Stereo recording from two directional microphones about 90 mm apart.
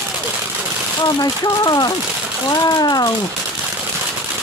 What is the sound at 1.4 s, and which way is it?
Speech, 45° left (ahead or behind).